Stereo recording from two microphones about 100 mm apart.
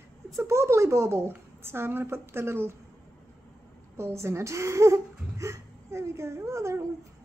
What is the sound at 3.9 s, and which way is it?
Speech, 25° right (ahead or behind).